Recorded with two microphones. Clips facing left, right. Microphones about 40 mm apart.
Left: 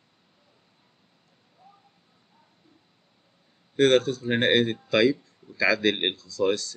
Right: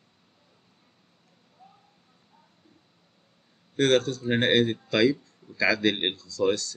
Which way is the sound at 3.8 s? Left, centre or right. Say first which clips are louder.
Left 2 dB; centre.